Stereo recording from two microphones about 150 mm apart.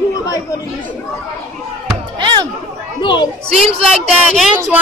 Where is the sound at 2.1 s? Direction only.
30° right (ahead or behind).